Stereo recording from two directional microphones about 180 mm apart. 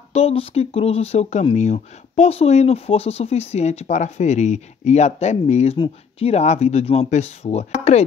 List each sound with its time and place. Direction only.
0.1 s speech: 35° left (ahead or behind)